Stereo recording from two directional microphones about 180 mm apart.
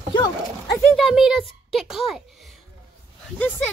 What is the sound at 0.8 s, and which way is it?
Speech, 5° left (ahead or behind).